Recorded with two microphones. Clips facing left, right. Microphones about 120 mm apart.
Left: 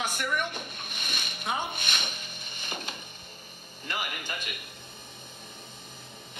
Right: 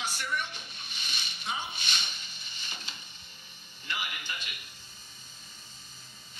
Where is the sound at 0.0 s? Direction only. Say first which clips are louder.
Left 4 dB; 50° left (ahead or behind).